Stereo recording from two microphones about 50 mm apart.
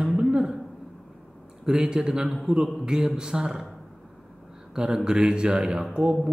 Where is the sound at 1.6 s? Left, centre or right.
Centre.